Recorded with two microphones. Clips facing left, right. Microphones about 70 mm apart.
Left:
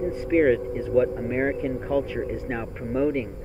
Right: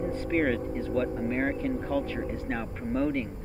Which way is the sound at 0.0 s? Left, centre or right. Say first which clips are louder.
Left 6 dB; centre.